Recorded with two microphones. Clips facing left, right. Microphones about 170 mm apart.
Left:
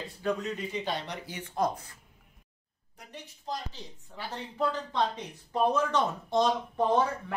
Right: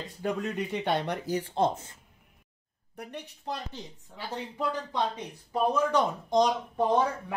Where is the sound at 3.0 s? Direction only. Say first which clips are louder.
Right 7 dB; 60° right (ahead or behind).